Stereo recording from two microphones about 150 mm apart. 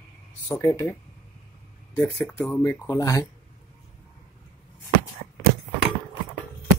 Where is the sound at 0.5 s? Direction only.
20° left (ahead or behind).